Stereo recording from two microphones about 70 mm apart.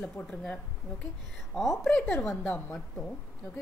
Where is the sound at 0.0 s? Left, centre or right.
Centre.